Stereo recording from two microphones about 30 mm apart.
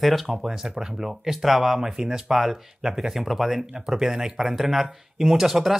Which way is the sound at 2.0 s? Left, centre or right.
Right.